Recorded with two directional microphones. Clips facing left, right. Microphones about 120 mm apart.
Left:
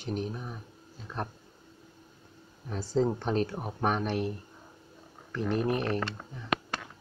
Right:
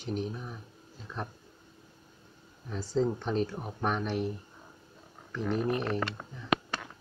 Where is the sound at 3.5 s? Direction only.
10° left (ahead or behind).